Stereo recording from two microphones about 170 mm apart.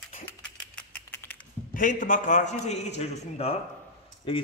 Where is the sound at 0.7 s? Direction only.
10° left (ahead or behind).